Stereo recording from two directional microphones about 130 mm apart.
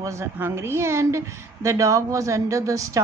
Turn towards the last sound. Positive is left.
turn(degrees=-25)  # may be behind; listen again after turning